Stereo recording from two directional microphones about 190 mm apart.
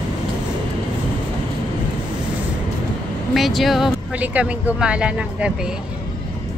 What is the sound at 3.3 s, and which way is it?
Speech, centre (ahead or behind).